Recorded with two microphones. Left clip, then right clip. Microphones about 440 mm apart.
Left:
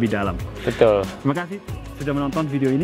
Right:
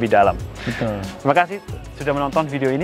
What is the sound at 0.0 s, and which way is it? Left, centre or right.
Speech, right.